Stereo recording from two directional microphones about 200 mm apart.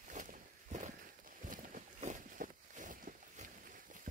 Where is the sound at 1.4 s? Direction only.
40° right (ahead or behind).